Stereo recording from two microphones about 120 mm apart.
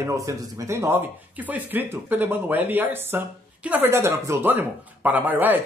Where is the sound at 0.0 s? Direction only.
25° right (ahead or behind).